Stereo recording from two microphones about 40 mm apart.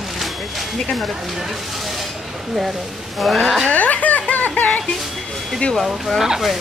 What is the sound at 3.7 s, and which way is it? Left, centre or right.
Music, left.